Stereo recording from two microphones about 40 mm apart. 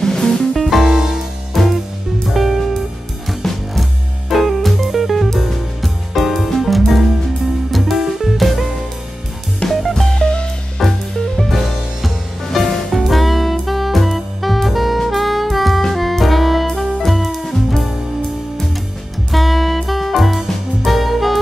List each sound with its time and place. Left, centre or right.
0.0 s music: centre
0.6 s music: centre
1.6 s music: centre
3.4 s music: centre
4.3 s music: centre
9.7 s music: centre
10.1 s music: left
10.8 s music: centre
12.9 s music: centre
19.3 s music: centre